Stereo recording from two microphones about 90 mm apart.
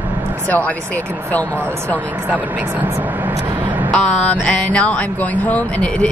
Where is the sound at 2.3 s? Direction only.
20° right (ahead or behind).